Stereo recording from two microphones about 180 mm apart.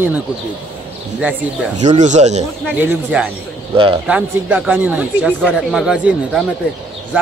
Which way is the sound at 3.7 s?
30° right (ahead or behind).